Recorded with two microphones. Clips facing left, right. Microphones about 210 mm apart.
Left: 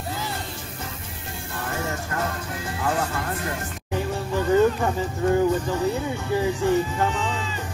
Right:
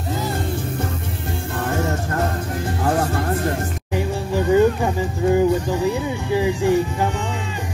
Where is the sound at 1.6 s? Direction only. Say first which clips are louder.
Right 6 dB; 45° right (ahead or behind).